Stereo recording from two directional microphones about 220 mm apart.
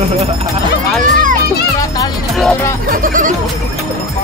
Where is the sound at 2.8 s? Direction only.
40° right (ahead or behind).